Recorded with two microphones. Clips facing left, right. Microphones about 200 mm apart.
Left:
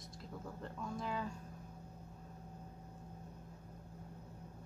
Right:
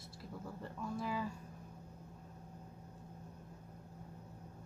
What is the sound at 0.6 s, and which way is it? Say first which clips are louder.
Speech: right 2 dB; 5° right (ahead or behind).